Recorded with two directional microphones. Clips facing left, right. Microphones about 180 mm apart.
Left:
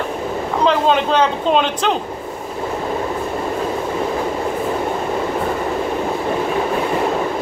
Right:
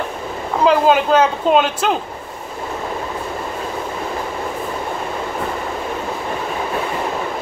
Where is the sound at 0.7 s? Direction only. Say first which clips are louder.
Right 3 dB; 5° right (ahead or behind).